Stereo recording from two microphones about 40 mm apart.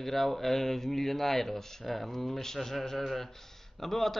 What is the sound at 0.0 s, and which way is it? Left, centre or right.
A man's voice, centre.